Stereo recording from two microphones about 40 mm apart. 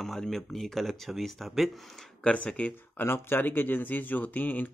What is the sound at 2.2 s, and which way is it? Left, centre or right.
Speech, left.